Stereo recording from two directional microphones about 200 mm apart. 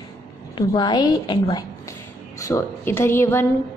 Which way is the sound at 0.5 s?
20° left (ahead or behind).